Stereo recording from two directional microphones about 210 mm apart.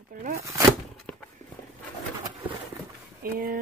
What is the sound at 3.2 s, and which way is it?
Speech, 45° right (ahead or behind).